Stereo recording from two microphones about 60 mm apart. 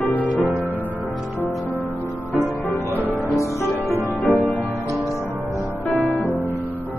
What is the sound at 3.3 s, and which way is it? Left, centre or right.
Music, left.